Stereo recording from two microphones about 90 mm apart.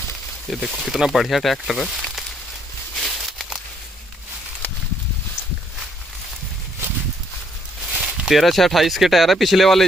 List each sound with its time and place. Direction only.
0.5 s speech: centre (ahead or behind)
3.0 s a sound: centre (ahead or behind)
7.9 s speech: 10° right (ahead or behind)